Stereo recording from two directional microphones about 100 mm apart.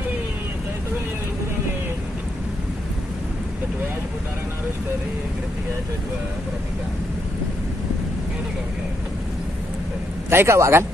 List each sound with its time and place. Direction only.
10.3 s speech: 25° right (ahead or behind)